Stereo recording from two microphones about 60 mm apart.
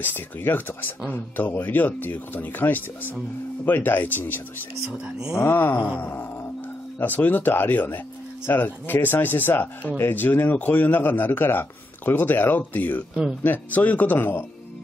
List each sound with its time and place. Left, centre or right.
0.0 s speech: left
5.5 s speech: left